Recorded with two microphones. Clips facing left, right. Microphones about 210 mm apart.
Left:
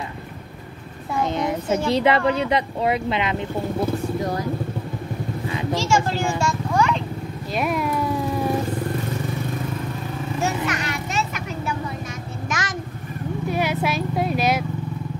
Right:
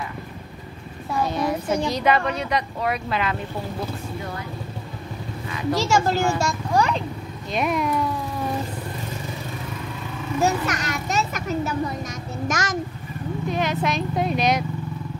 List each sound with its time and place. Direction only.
1.2 s a child's voice: 20° left (ahead or behind)
4.2 s speech: 35° left (ahead or behind)
5.9 s a child's voice: 40° right (ahead or behind)
7.5 s speech: 5° left (ahead or behind)
10.4 s vehicle: 40° right (ahead or behind)
12.4 s a sound: 45° right (ahead or behind)
13.5 s speech: 10° left (ahead or behind)